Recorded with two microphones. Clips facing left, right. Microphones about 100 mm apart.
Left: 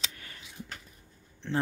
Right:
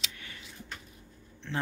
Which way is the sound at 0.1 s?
40° left (ahead or behind).